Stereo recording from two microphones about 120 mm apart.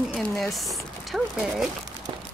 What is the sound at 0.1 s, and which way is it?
Speech, 5° left (ahead or behind).